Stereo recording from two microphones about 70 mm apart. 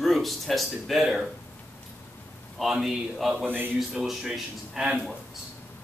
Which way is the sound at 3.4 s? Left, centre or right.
Right.